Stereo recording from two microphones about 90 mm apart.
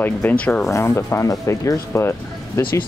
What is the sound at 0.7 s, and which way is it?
Speech, 30° left (ahead or behind).